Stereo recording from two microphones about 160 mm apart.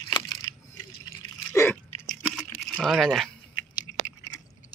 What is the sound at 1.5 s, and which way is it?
Chewing, 15° left (ahead or behind).